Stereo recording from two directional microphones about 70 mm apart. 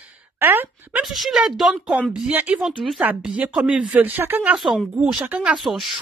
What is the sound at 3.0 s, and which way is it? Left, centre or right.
Speech, centre.